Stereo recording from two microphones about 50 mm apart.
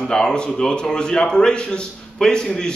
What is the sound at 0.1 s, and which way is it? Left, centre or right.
A man's voice, centre.